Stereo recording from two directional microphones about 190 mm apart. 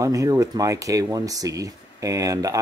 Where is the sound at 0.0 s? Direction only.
15° right (ahead or behind).